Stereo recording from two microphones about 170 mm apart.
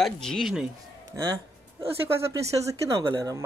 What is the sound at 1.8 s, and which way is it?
Speech, 15° right (ahead or behind).